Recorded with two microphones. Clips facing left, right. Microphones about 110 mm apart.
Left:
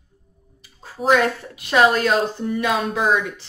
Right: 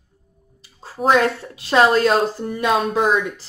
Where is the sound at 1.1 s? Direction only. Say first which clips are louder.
Right 1 dB; 30° right (ahead or behind).